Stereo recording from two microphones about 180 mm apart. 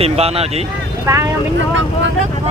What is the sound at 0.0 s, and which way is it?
Speech, 35° right (ahead or behind).